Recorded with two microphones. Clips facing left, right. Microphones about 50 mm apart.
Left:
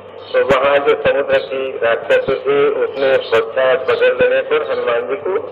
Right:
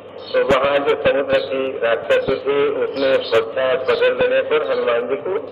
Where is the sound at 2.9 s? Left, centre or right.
Left.